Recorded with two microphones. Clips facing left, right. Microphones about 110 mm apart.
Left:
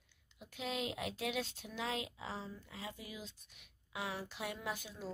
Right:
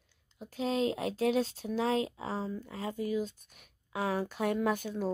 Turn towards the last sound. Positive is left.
turn(degrees=-50)  # may be behind; listen again after turning